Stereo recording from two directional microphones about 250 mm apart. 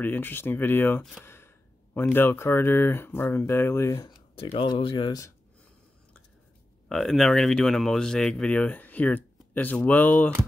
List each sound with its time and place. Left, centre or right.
0.0 s speech: centre
1.2 s a sound: centre
2.0 s speech: centre
6.9 s speech: centre